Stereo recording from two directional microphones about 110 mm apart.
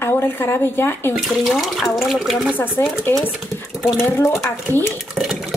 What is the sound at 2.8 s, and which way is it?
Speech, 25° left (ahead or behind).